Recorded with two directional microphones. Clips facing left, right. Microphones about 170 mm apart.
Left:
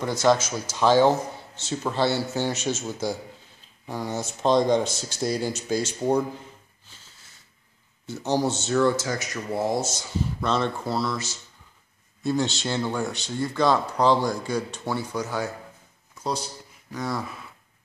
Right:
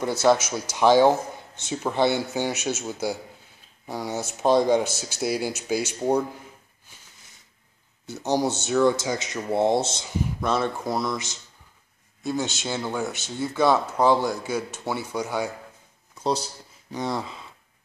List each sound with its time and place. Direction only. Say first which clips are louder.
0.0 s speech: right 1 dB; 10° right (ahead or behind)
8.1 s speech: even; 10° right (ahead or behind)
10.1 s speech: right 1 dB; 15° right (ahead or behind)
12.2 s speech: left 3 dB; centre (ahead or behind)
16.9 s speech: right 1 dB; 25° right (ahead or behind)